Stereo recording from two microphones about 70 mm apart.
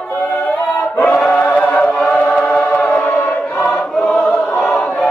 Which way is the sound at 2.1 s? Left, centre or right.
Centre.